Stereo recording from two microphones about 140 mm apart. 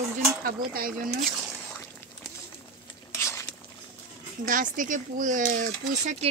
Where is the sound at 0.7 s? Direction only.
90° right.